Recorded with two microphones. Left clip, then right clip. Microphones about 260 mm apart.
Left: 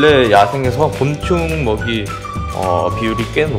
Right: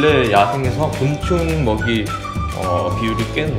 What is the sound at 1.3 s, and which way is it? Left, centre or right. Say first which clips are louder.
Speech: left 1 dB; centre.